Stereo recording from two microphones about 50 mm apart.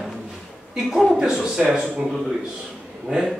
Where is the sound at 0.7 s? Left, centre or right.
Centre.